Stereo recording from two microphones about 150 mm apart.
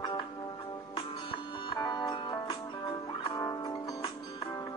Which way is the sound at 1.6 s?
25° left (ahead or behind).